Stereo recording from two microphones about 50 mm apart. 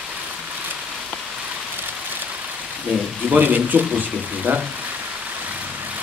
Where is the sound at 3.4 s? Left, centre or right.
Right.